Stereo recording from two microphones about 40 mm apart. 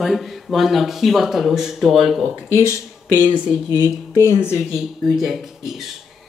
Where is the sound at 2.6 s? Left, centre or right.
Left.